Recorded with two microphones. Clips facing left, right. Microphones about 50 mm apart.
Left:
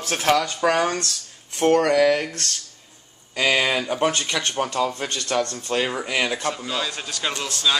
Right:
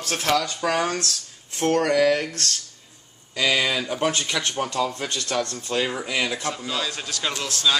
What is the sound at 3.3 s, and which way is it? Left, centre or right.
Speech, left.